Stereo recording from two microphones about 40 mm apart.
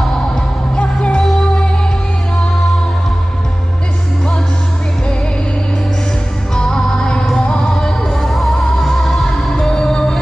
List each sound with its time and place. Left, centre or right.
0.7 s music: left
6.5 s music: centre